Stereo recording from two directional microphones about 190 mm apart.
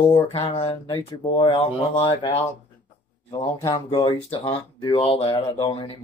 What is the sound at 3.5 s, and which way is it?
Speech, 20° left (ahead or behind).